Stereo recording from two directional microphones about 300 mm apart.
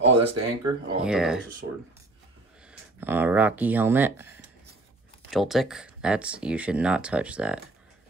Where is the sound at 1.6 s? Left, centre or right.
Right.